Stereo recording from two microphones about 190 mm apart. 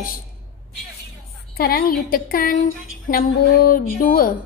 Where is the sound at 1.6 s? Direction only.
50° left (ahead or behind).